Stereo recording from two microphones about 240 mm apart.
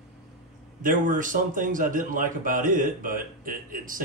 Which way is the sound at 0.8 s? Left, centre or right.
Right.